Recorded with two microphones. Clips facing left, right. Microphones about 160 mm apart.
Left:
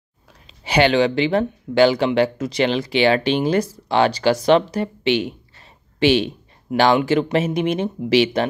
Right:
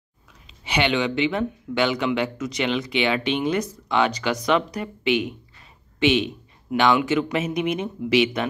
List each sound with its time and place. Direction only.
0.7 s speech: 35° left (ahead or behind)